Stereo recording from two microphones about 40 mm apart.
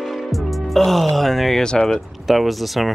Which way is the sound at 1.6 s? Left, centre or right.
Centre.